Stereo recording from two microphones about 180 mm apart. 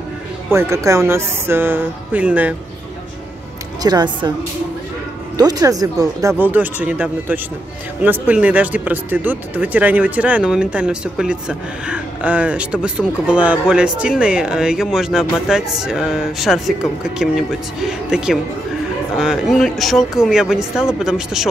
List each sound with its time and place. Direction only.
0.5 s speech: 15° right (ahead or behind)
3.8 s speech: 25° right (ahead or behind)
5.4 s speech: 20° right (ahead or behind); by 21.5 s 5° right (ahead or behind)